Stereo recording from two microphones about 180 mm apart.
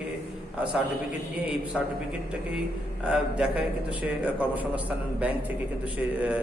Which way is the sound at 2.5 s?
5° right (ahead or behind).